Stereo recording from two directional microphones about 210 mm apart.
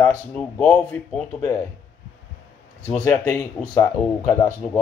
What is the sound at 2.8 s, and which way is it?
Speech, 10° left (ahead or behind).